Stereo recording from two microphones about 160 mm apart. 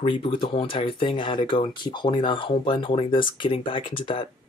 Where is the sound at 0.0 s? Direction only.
30° left (ahead or behind).